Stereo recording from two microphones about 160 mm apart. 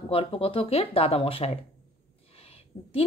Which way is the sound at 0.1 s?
35° left (ahead or behind).